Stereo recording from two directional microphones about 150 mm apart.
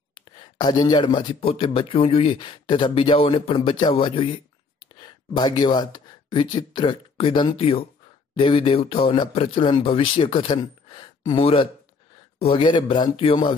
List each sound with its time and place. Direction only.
0.1 s speech: 30° left (ahead or behind)